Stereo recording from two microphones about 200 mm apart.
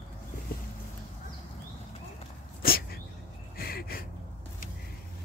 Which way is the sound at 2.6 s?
50° left (ahead or behind).